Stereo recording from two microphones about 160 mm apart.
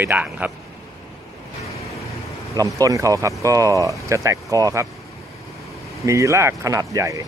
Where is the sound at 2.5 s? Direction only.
20° right (ahead or behind).